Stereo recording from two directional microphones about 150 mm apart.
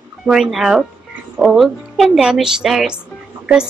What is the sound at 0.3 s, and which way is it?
A woman's voice, centre (ahead or behind).